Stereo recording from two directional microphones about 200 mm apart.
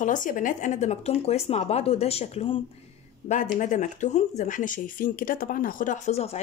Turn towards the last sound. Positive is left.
turn(degrees=30)  # may be behind; listen again after turning